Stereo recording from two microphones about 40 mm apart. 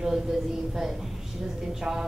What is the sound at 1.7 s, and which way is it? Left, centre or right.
Speech, centre.